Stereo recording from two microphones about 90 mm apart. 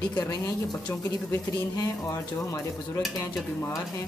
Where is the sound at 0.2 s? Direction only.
35° left (ahead or behind).